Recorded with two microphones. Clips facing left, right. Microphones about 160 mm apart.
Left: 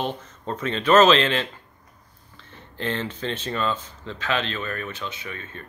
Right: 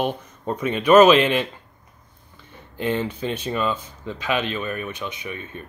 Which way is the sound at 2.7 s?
15° right (ahead or behind).